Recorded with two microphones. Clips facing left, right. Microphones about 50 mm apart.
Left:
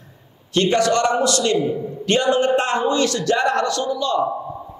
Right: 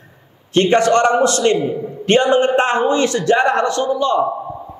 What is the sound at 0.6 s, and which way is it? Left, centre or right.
A man's voice, right.